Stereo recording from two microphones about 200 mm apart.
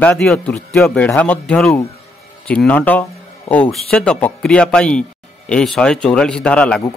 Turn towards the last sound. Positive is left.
turn(degrees=5)  # may be behind; listen again after turning